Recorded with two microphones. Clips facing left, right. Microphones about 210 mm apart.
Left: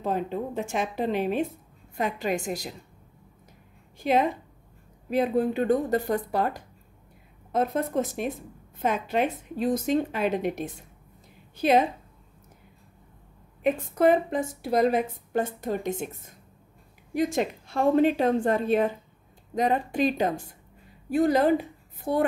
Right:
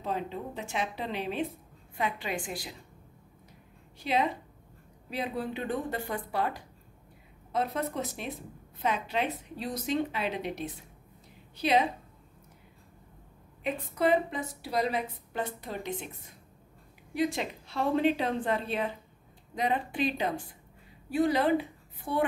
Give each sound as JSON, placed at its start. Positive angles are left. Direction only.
{"t": 0.0, "sound": "a woman's voice", "side_deg": 50}
{"t": 4.0, "sound": "a woman's voice", "side_deg": 50}
{"t": 13.7, "sound": "a woman's voice", "side_deg": 50}